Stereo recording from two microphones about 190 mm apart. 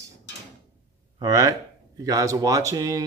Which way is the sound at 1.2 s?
20° right (ahead or behind).